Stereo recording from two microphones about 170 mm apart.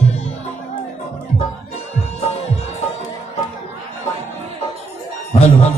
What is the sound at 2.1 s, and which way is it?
Music, 40° left (ahead or behind).